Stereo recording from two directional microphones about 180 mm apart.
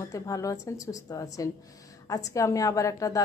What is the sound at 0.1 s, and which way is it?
A woman's voice, 20° left (ahead or behind).